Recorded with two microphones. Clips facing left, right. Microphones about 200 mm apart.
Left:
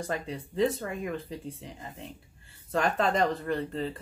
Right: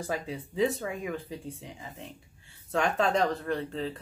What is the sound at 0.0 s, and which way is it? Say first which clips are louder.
Speech: even; 5° right (ahead or behind).